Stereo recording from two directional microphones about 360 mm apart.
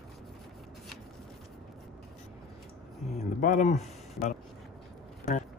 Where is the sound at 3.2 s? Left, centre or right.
Left.